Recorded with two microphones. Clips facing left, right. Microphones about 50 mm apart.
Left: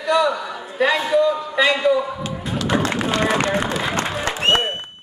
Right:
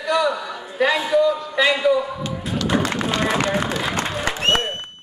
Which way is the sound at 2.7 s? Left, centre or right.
Centre.